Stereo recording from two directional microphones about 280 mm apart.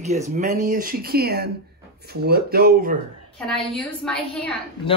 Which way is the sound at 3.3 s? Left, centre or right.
Centre.